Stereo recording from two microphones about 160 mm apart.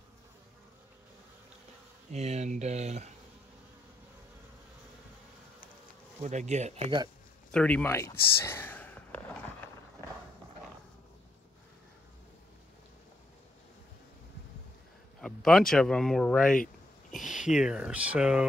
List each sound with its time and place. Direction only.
2.1 s speech: 45° right (ahead or behind)
6.2 s speech: 45° right (ahead or behind)
7.5 s speech: 10° left (ahead or behind)
10.0 s clip-clop: 20° left (ahead or behind)
15.1 s speech: 5° left (ahead or behind)